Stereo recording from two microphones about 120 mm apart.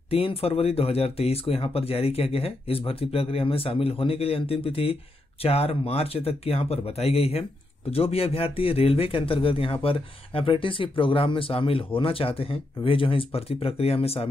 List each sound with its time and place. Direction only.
0.1 s speech: 50° left (ahead or behind)